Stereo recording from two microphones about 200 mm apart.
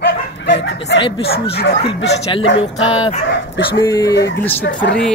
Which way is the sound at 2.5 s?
25° left (ahead or behind).